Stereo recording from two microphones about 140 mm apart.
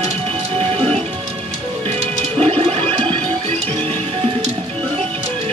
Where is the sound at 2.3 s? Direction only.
45° right (ahead or behind).